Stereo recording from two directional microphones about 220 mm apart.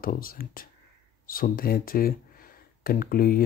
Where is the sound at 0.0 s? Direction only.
40° left (ahead or behind).